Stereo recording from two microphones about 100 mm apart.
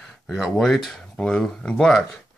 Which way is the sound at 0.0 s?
Centre (ahead or behind).